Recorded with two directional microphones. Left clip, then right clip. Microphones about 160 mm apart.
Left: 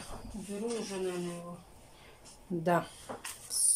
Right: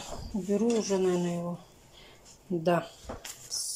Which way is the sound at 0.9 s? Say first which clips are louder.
Right 9 dB; 55° right (ahead or behind).